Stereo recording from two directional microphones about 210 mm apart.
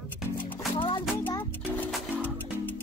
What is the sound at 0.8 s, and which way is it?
Music, 25° left (ahead or behind).